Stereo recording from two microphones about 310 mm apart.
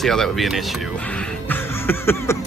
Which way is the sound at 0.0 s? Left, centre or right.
Centre.